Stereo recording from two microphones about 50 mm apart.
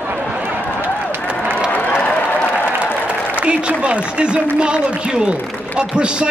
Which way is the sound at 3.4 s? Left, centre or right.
Right.